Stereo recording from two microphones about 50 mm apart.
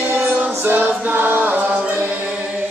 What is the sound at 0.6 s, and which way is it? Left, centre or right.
Music, right.